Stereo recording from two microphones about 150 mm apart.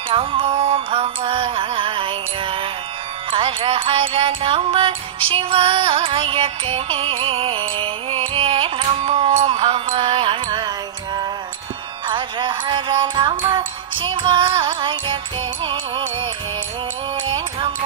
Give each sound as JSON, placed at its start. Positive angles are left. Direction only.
{"t": 0.1, "sound": "music", "side_deg": -35}
{"t": 12.1, "sound": "music", "side_deg": -30}